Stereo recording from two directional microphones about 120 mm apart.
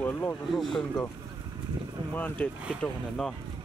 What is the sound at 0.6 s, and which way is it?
Speech, centre (ahead or behind).